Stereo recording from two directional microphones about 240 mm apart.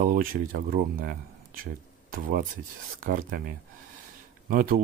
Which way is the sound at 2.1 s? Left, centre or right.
Right.